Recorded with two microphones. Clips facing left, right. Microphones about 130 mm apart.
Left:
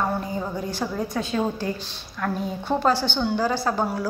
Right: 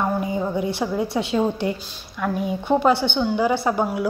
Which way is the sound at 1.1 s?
15° right (ahead or behind).